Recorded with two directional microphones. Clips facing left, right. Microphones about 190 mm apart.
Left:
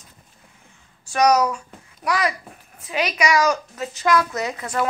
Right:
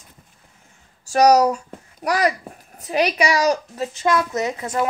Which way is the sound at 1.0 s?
35° right (ahead or behind).